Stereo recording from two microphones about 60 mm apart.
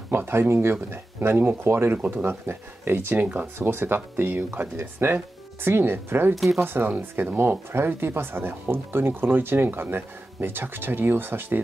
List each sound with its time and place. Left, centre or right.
0.1 s speech: right
6.3 s speech: centre
6.6 s speech: right